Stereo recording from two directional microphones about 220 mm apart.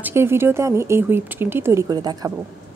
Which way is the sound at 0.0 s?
10° right (ahead or behind).